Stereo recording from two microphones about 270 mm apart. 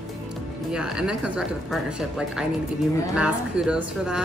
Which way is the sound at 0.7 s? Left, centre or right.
Centre.